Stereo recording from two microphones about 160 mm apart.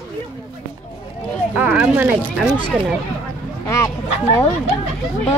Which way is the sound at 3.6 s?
20° left (ahead or behind).